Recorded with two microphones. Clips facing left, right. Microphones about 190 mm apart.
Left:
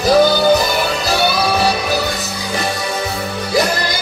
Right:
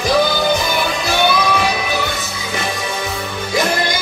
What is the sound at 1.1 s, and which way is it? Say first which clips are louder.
Music: right 1 dB; 35° left (ahead or behind).